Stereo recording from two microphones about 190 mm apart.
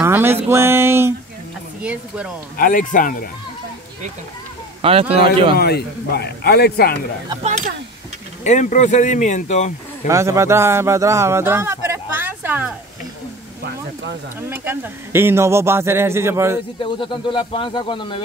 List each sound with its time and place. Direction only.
0.0 s music: 10° right (ahead or behind)
0.5 s a man's voice: 15° right (ahead or behind)
2.5 s speech: 45° left (ahead or behind)
4.8 s speech: 30° right (ahead or behind)
5.6 s a man's voice: 55° left (ahead or behind)
8.5 s speech: 40° left (ahead or behind)
10.0 s speech: 15° right (ahead or behind)
14.5 s a man's voice: 10° right (ahead or behind)
17.0 s a man's voice: 25° left (ahead or behind)